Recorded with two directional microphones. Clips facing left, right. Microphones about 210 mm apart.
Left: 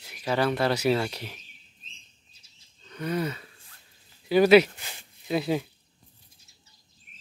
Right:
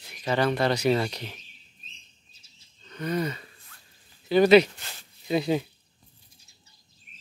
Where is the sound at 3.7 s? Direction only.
35° left (ahead or behind).